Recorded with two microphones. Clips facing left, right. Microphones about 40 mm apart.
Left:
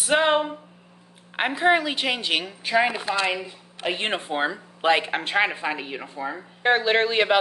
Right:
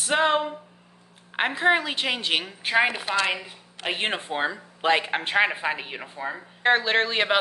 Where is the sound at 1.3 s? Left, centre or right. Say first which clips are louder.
Left 1 dB; centre.